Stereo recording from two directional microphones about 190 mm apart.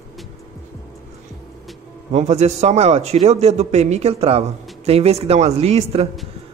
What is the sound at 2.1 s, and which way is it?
A man's voice, 35° right (ahead or behind).